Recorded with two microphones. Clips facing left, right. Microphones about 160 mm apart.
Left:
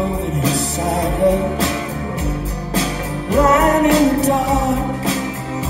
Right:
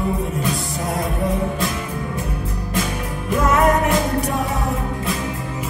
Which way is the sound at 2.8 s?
75° left (ahead or behind).